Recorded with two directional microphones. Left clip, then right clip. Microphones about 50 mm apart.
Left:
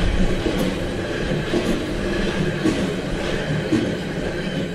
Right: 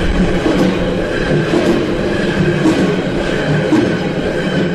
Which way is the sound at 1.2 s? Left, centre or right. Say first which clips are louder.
Right 10 dB; centre.